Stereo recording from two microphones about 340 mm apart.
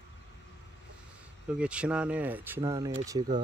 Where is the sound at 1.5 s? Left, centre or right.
Centre.